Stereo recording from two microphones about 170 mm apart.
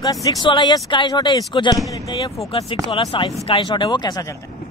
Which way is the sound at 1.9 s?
25° left (ahead or behind).